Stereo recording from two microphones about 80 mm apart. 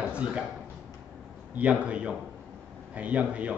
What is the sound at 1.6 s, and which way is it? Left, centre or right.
A man's voice, centre.